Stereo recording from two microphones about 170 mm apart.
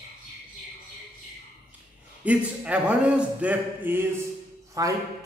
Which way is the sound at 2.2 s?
5° right (ahead or behind).